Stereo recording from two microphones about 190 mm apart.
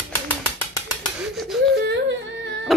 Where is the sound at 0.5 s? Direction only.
15° left (ahead or behind).